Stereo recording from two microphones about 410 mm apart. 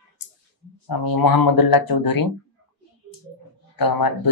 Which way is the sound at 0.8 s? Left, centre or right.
Left.